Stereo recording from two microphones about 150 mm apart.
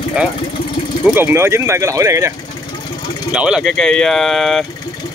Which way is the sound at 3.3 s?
5° right (ahead or behind).